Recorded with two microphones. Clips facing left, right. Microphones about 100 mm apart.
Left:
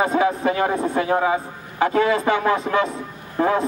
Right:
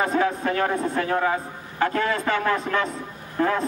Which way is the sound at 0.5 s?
10° left (ahead or behind).